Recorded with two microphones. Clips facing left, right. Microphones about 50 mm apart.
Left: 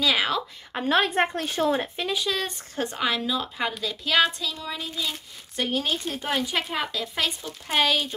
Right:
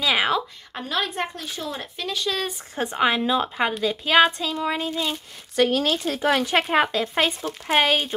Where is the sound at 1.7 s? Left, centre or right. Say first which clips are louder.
Left 7 dB; left.